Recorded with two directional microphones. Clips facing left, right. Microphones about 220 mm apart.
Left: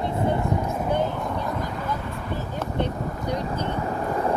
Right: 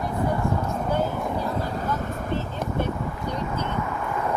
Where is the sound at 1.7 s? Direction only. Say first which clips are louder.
Right 2 dB; 45° right (ahead or behind).